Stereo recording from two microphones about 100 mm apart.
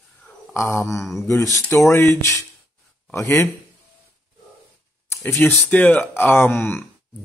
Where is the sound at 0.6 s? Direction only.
25° left (ahead or behind).